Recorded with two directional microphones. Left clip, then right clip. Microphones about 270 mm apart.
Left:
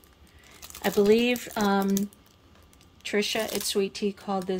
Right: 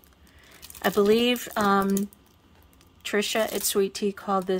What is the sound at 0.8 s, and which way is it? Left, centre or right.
Speech, centre.